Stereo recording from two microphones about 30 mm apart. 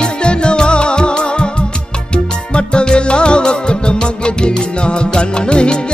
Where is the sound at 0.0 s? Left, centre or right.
Left.